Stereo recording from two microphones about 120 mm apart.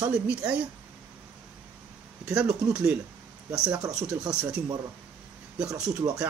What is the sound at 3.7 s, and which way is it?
Speech, 25° right (ahead or behind).